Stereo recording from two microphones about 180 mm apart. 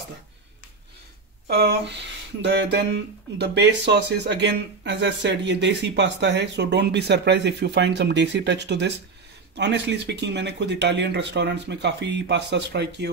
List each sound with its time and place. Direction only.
1.5 s speech: 65° right (ahead or behind)